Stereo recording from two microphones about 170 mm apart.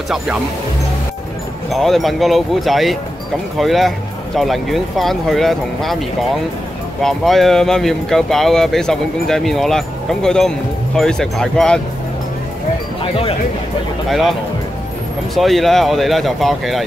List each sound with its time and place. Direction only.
1.7 s speech: centre (ahead or behind)
13.0 s speech: 35° left (ahead or behind)
14.0 s speech: centre (ahead or behind)
15.3 s speech: centre (ahead or behind)